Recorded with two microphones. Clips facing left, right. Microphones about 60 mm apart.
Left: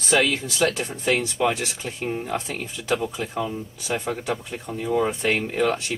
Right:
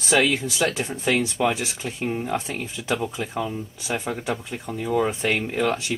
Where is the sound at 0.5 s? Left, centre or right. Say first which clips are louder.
Left 1 dB; centre.